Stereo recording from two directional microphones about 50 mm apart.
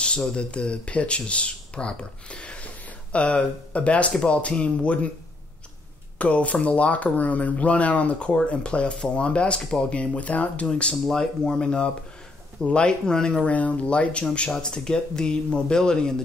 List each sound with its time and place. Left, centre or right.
0.0 s speech: centre
6.1 s speech: left
10.7 s speech: centre